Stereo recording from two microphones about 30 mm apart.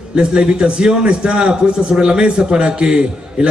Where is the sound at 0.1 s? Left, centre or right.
Right.